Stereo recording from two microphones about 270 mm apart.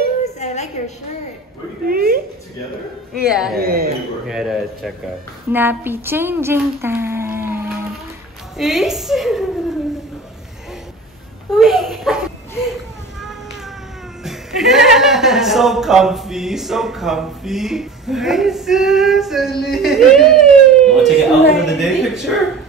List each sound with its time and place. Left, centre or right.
0.2 s a sound: left
1.9 s a woman's voice: right
3.2 s a man's voice: centre
3.5 s a woman's voice: right
4.3 s a man's voice: centre
11.5 s a sound: centre
14.2 s a man's voice: centre